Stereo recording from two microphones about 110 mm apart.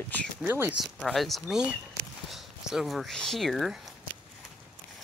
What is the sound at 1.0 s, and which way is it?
Speech, centre (ahead or behind).